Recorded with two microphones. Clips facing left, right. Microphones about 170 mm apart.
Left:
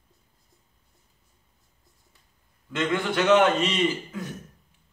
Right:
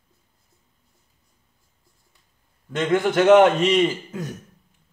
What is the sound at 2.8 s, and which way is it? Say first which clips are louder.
Speech: right 6 dB; 45° right (ahead or behind).